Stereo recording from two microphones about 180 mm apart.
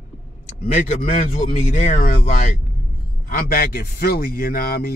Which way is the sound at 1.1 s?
40° left (ahead or behind).